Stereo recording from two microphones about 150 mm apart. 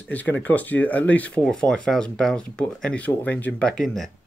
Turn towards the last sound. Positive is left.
turn(degrees=5)  # may be behind; listen again after turning